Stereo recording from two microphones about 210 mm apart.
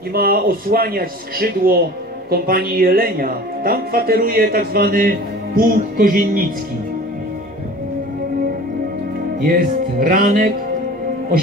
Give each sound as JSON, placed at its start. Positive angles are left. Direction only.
{"t": 0.1, "sound": "speech", "side_deg": -45}
{"t": 9.4, "sound": "music", "side_deg": -40}